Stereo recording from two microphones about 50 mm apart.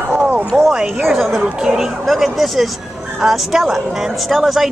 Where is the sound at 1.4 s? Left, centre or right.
Centre.